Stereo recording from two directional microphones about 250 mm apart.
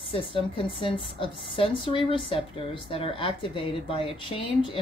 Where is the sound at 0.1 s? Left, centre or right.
Centre.